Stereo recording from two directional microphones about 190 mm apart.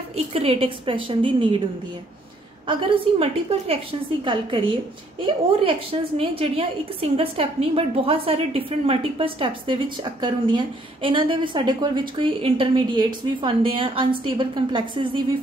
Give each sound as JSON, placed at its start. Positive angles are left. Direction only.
{"t": 0.1, "sound": "a woman's voice", "side_deg": -30}
{"t": 2.6, "sound": "a woman's voice", "side_deg": -30}